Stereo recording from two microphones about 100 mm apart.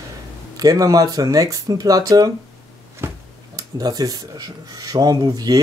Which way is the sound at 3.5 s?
40° right (ahead or behind).